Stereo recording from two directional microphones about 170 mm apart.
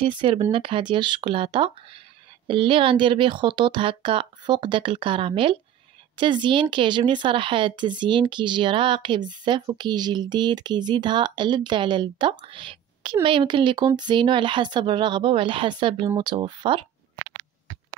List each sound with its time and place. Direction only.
0.0 s speech: 30° right (ahead or behind)